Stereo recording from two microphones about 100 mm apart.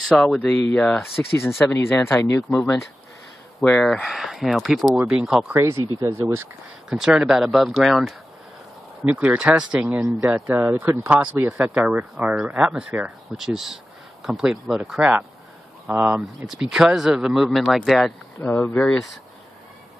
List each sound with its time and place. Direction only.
0.4 s speech: 5° left (ahead or behind)
1.6 s speech: 25° left (ahead or behind)
3.5 s speech: centre (ahead or behind)
5.6 s speech: 30° right (ahead or behind)
6.9 s speech: 5° right (ahead or behind)
9.1 s speech: 10° right (ahead or behind)
15.9 s speech: 20° right (ahead or behind)
16.4 s speech: 5° right (ahead or behind)
18.4 s speech: 15° left (ahead or behind)